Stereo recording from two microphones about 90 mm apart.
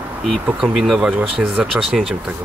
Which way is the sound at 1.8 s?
5° right (ahead or behind).